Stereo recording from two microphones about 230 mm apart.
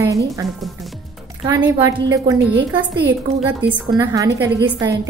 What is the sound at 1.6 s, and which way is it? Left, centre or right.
Speech, centre.